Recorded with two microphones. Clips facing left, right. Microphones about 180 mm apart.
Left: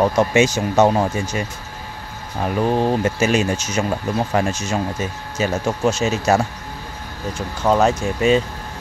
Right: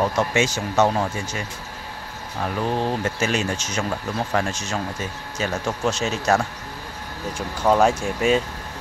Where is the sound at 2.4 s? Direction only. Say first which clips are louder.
Left 5 dB; 15° left (ahead or behind).